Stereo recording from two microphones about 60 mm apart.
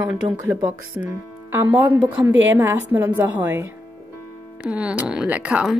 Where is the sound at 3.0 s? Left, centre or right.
Right.